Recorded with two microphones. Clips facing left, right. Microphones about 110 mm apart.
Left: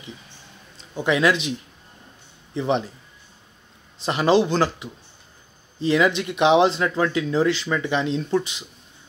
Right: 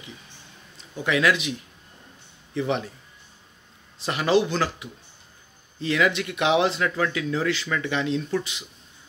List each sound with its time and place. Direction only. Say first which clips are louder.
0.9 s speech: left 3 dB; 25° left (ahead or behind)
2.5 s a man's voice: left 3 dB; 25° left (ahead or behind)
4.0 s speech: left 3 dB; 25° left (ahead or behind)